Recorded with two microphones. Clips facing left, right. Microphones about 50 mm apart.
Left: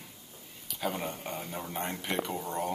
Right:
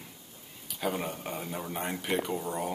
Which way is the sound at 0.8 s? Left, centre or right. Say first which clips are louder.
Right 2 dB; centre.